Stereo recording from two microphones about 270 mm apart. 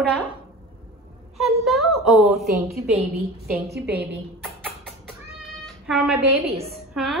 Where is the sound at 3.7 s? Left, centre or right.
Right.